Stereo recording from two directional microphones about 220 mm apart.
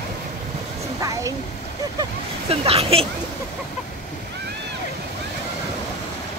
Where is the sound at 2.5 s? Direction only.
25° right (ahead or behind).